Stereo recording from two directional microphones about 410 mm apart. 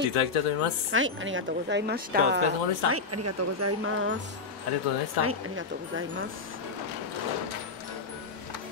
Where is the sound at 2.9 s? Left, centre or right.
Right.